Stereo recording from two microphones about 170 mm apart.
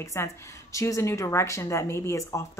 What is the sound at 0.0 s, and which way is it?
A woman's voice, 15° left (ahead or behind).